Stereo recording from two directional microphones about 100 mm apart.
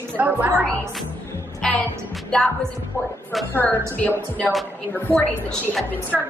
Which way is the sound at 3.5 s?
15° left (ahead or behind).